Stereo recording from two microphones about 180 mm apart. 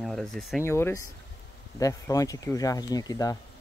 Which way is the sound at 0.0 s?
Centre (ahead or behind).